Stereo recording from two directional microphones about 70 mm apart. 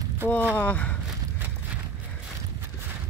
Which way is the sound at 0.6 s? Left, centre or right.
Left.